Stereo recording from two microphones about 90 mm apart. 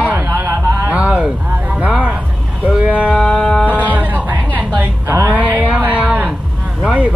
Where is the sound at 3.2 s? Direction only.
10° left (ahead or behind).